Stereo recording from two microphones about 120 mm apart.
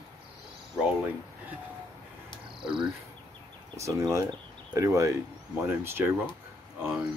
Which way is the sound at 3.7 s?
25° right (ahead or behind).